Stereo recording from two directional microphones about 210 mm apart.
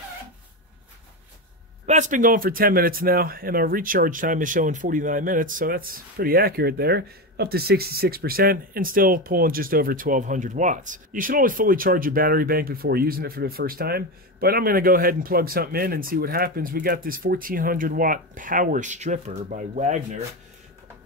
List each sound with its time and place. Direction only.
1.9 s speech: 35° right (ahead or behind)